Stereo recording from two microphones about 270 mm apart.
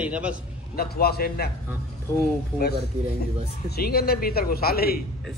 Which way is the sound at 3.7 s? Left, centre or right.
Left.